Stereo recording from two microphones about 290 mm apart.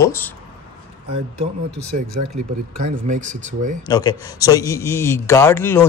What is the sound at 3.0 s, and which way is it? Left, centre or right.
Speech, right.